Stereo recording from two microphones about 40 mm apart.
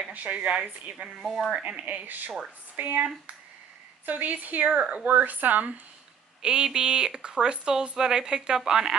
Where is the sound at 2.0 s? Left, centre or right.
Right.